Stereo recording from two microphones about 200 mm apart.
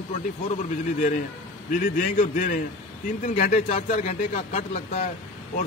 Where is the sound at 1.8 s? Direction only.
40° left (ahead or behind).